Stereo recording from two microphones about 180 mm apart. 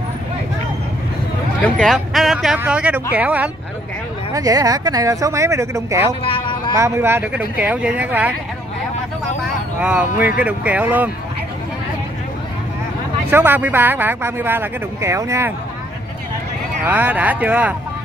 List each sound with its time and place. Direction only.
1.6 s speech: 5° left (ahead or behind)
4.3 s speech: 20° right (ahead or behind)
6.2 s vehicle: 30° left (ahead or behind)
6.7 s speech: 15° right (ahead or behind)
9.8 s speech: 5° right (ahead or behind)
13.3 s speech: 10° right (ahead or behind)
16.8 s speech: 10° right (ahead or behind)